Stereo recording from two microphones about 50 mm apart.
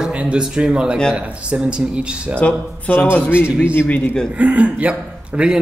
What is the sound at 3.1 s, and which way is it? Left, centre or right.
Speech, left.